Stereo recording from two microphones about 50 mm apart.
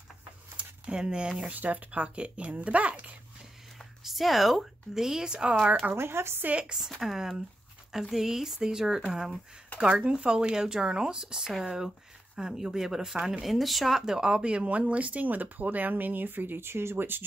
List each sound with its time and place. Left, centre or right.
0.6 s a sound: right
1.5 s speech: right
4.0 s speech: centre; by 5.8 s right
5.9 s speech: right
6.6 s speech: centre; by 17.2 s right